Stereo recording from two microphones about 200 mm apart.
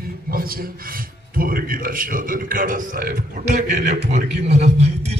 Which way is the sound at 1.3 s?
45° right (ahead or behind).